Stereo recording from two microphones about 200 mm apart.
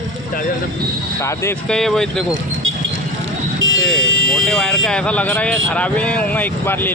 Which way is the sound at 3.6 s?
75° right (ahead or behind).